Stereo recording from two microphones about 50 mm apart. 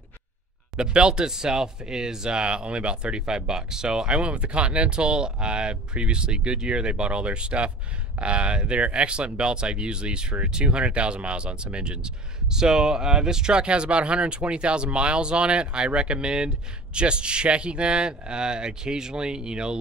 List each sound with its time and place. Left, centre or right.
0.7 s speech: centre